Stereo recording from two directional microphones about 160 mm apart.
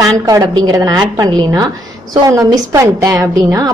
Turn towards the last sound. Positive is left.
turn(degrees=-20)  # may be behind; listen again after turning